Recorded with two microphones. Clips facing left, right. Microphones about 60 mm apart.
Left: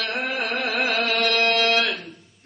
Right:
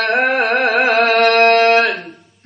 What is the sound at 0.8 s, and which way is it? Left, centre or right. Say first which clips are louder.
Carnatic music: right 9 dB; right.